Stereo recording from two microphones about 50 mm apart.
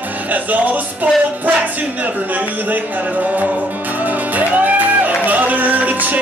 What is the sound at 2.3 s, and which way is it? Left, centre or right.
Music, right.